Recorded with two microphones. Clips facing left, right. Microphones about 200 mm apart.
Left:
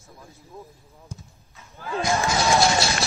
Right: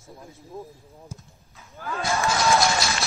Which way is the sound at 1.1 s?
5° right (ahead or behind).